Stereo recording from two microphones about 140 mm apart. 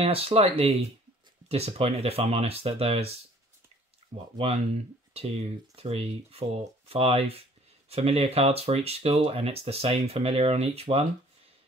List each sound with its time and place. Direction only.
0.0 s speech: 45° right (ahead or behind)
4.4 s speech: 50° right (ahead or behind)